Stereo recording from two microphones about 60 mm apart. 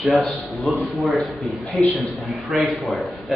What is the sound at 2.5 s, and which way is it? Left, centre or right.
Speech, centre.